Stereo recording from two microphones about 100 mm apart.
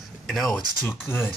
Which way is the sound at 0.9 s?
20° left (ahead or behind).